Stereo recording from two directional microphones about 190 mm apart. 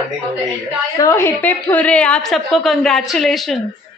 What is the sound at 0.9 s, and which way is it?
A woman's voice, 15° left (ahead or behind).